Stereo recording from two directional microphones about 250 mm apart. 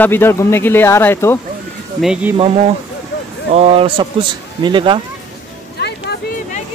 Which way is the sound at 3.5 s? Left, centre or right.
Right.